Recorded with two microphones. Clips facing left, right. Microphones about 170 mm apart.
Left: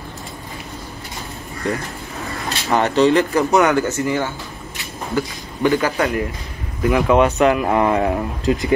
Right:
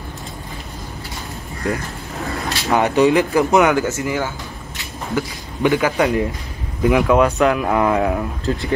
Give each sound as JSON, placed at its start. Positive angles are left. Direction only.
{"t": 2.7, "sound": "speech", "side_deg": -15}
{"t": 7.1, "sound": "speech", "side_deg": 0}
{"t": 8.5, "sound": "speech", "side_deg": 15}